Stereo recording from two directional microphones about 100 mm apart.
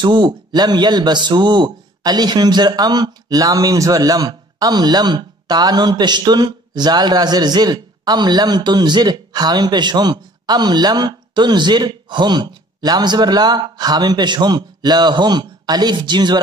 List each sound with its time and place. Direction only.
0.0 s a man's voice: 50° right (ahead or behind)